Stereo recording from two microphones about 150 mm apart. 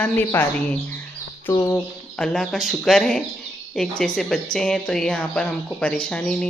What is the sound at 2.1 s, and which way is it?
Speech, 5° left (ahead or behind).